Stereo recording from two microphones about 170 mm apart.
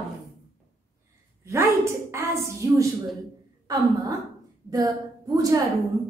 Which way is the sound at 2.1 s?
15° right (ahead or behind).